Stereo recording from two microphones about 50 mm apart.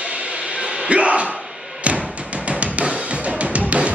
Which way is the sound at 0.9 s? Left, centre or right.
Right.